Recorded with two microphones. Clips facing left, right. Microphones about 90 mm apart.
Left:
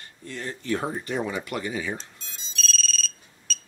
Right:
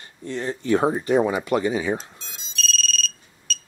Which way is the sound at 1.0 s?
35° right (ahead or behind).